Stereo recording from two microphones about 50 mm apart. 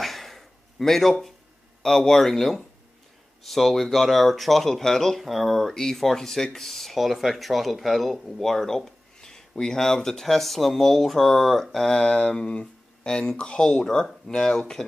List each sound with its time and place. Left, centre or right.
0.0 s a sound: centre
1.8 s speech: centre
11.9 s speech: left